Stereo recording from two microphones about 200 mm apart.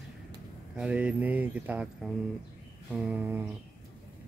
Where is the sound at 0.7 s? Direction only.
5° right (ahead or behind).